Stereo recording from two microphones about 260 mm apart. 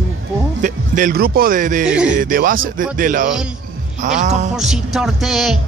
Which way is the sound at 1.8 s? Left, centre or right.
Centre.